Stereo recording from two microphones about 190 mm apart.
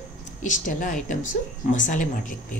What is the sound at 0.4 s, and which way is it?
A woman's voice, 40° left (ahead or behind).